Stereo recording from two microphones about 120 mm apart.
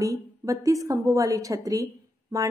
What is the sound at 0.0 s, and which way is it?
A woman's voice, 25° right (ahead or behind).